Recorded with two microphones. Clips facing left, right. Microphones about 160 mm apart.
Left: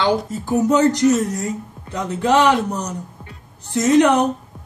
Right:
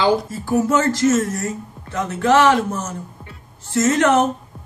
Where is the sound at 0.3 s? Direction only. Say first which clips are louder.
Left 1 dB; 20° left (ahead or behind).